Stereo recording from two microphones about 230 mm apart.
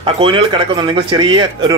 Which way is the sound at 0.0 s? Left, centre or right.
Right.